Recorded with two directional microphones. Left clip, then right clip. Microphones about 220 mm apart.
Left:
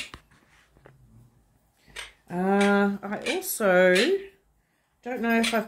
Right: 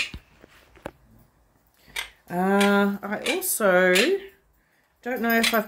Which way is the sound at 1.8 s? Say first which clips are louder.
Right 7 dB; 5° right (ahead or behind).